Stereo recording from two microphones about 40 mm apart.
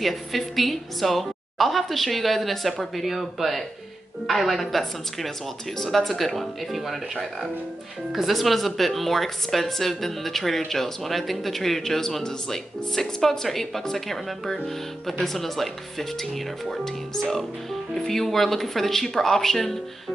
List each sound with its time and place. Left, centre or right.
0.0 s speech: centre